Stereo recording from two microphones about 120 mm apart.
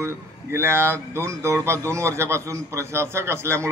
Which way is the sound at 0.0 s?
20° right (ahead or behind).